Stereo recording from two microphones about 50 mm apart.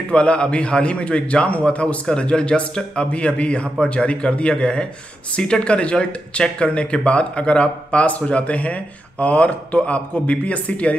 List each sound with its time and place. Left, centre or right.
0.1 s speech: left